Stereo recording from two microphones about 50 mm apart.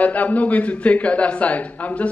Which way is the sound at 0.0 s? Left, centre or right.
Left.